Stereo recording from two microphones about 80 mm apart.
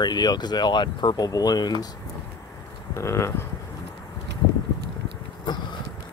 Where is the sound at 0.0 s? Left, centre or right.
Left.